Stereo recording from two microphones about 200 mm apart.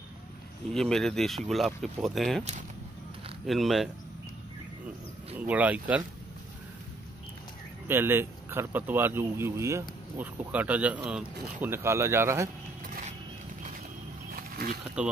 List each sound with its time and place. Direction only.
0.7 s speech: centre (ahead or behind)
3.4 s speech: centre (ahead or behind)
5.3 s speech: 10° right (ahead or behind)
7.9 s speech: 10° right (ahead or behind)
14.3 s a sound: 50° right (ahead or behind)